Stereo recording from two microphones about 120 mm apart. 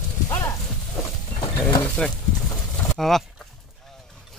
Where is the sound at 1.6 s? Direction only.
30° left (ahead or behind).